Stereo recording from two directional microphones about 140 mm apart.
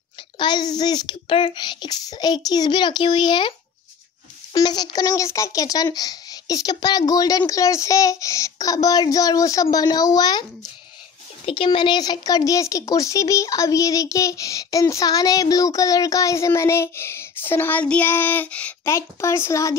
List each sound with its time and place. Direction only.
0.4 s speech: 30° left (ahead or behind)
4.6 s speech: 30° left (ahead or behind)
11.4 s speech: 40° left (ahead or behind); by 18.8 s 10° left (ahead or behind)
18.9 s speech: 20° left (ahead or behind)